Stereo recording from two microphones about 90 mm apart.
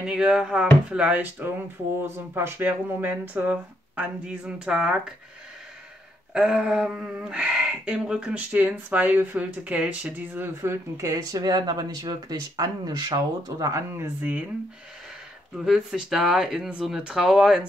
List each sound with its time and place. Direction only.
0.0 s speech: 10° right (ahead or behind)
6.3 s speech: 10° right (ahead or behind); by 14.3 s 30° right (ahead or behind)
15.5 s speech: 5° right (ahead or behind)